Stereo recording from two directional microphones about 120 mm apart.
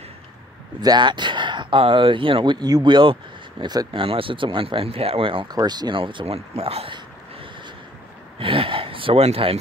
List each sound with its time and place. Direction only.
0.7 s speech: 40° right (ahead or behind)
8.4 s gasp: 45° right (ahead or behind)